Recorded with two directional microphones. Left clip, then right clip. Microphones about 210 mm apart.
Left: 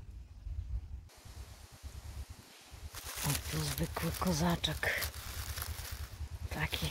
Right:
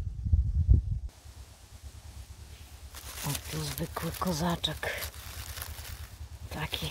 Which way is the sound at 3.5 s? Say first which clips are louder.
Right 2 dB; 10° right (ahead or behind).